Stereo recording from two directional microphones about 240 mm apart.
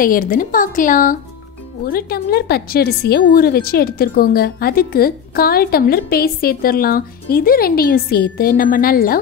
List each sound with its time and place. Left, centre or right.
0.0 s a woman's voice: left